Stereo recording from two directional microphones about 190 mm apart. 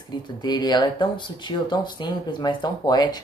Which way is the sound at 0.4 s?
20° left (ahead or behind).